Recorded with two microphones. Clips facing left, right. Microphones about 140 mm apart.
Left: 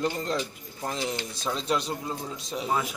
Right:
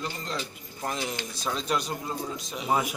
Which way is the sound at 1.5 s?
30° left (ahead or behind).